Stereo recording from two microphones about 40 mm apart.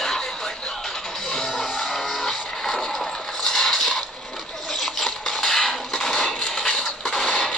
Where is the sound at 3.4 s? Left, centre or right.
Centre.